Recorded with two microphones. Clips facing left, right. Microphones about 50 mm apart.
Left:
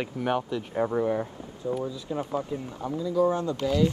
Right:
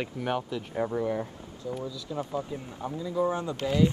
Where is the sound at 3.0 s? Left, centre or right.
Centre.